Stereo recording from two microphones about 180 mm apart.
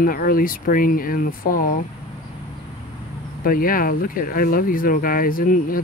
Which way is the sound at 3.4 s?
50° left (ahead or behind).